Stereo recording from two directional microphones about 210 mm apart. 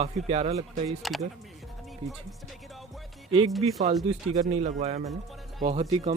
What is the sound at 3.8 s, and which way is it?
Speech, 30° right (ahead or behind).